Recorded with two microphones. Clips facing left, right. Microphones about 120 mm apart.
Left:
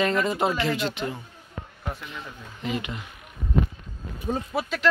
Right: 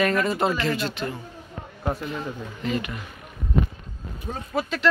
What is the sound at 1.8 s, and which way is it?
Speech, 40° right (ahead or behind).